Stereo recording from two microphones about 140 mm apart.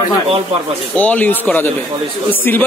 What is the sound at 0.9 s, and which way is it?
Speech, 10° left (ahead or behind).